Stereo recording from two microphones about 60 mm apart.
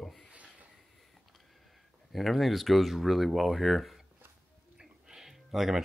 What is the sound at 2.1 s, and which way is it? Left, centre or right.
Speech, centre.